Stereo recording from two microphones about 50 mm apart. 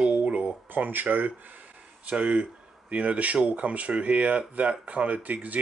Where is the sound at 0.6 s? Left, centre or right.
Right.